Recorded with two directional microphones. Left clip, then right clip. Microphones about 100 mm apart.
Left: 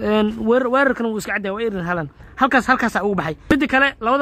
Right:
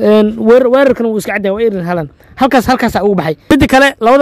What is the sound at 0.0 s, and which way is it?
Speech, 50° right (ahead or behind).